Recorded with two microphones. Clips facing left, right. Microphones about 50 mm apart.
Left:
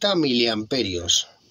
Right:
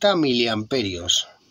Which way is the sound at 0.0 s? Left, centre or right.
Centre.